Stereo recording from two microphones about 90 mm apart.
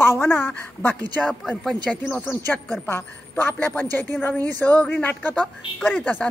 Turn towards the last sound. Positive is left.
turn(degrees=20)  # may be behind; listen again after turning